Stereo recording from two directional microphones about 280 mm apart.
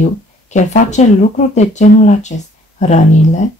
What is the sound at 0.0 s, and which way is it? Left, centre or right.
Speech, left.